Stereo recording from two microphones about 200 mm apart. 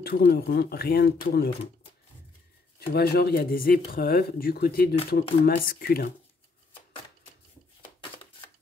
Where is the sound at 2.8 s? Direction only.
50° left (ahead or behind).